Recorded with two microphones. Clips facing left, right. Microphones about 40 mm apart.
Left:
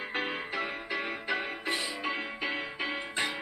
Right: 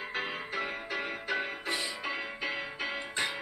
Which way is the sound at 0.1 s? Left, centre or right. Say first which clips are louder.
Left 2 dB; centre.